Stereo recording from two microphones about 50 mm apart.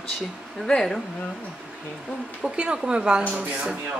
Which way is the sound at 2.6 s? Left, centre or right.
Centre.